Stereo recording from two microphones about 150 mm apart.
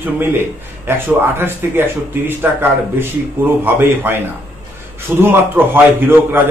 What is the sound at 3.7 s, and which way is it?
A man's voice, 15° right (ahead or behind).